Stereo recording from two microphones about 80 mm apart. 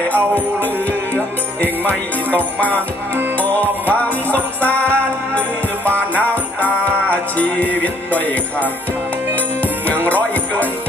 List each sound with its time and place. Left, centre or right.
1.6 s music: left